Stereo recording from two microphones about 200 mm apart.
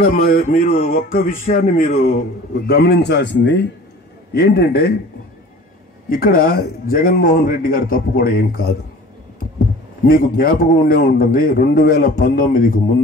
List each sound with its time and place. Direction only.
0.1 s speech: 45° left (ahead or behind); by 3.6 s 65° left (ahead or behind)
4.3 s speech: 55° left (ahead or behind)
6.0 s speech: 45° left (ahead or behind)
10.0 s speech: 45° left (ahead or behind)